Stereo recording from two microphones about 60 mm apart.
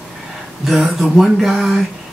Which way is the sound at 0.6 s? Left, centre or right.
Centre.